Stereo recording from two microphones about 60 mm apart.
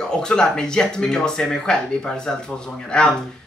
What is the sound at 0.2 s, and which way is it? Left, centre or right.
Speech, centre.